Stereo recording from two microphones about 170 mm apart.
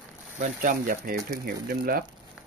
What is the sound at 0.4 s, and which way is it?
Speech, 55° right (ahead or behind).